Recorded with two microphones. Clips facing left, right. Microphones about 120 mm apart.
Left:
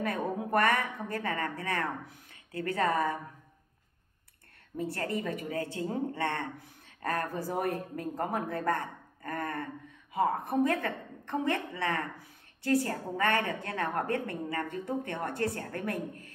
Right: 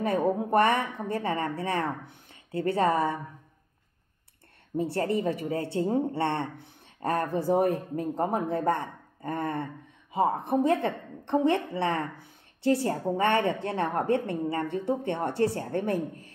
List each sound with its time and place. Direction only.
0.0 s a woman's voice: 30° right (ahead or behind)
4.7 s a woman's voice: 30° right (ahead or behind)